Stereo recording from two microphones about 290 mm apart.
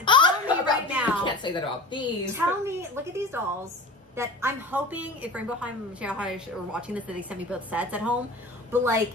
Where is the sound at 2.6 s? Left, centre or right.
Centre.